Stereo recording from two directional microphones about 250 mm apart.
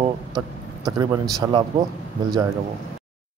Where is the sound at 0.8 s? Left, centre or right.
Centre.